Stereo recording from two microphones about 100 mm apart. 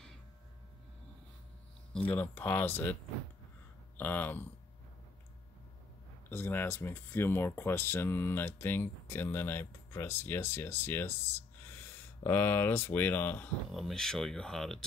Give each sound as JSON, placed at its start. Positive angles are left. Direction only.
{"t": 2.0, "sound": "speech", "side_deg": 20}
{"t": 6.3, "sound": "speech", "side_deg": 20}
{"t": 13.7, "sound": "speech", "side_deg": 0}